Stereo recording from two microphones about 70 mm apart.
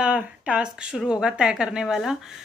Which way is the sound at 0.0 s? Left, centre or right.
Centre.